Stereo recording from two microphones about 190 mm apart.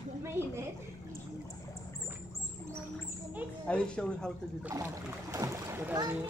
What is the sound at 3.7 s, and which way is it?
Speech, 5° left (ahead or behind).